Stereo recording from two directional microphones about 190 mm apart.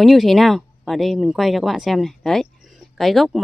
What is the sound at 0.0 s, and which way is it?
Speech, centre (ahead or behind).